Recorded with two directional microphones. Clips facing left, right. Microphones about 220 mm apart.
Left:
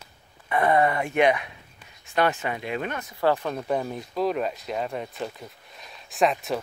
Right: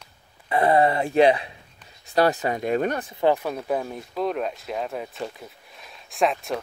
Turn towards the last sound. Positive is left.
turn(degrees=0)  # may be behind; listen again after turning